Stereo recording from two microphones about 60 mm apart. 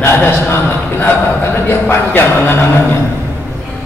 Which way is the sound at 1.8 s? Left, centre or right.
Left.